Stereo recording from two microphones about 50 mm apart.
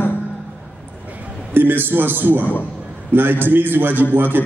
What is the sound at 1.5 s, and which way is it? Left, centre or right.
A man's voice, right.